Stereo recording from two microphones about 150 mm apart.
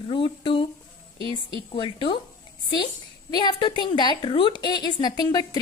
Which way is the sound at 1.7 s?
35° left (ahead or behind).